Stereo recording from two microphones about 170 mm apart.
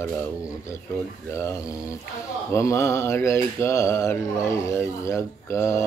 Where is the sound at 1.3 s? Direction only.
15° left (ahead or behind).